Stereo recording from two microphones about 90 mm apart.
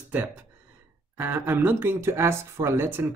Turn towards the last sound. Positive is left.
turn(degrees=-25)  # may be behind; listen again after turning